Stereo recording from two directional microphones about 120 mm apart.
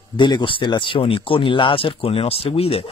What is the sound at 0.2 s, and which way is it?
Speech, 40° left (ahead or behind).